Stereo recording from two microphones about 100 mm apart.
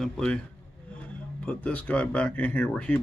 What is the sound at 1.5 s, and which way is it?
Speech, 15° left (ahead or behind).